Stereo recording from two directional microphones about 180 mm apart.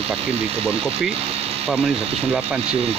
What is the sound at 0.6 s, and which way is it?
Speech, 35° right (ahead or behind).